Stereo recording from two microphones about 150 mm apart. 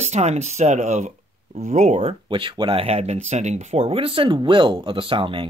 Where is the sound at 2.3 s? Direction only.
35° right (ahead or behind).